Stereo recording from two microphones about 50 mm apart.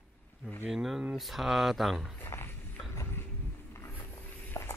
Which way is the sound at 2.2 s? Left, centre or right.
Left.